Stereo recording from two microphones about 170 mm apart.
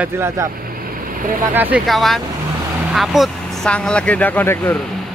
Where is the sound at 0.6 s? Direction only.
60° right (ahead or behind).